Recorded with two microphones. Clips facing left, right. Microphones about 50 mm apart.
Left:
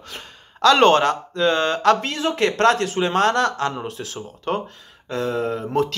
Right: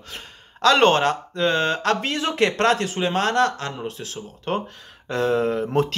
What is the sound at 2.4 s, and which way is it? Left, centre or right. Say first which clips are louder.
Speech: left 2 dB; centre.